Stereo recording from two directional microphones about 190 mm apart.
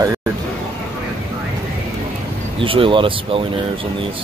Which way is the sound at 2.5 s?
30° right (ahead or behind).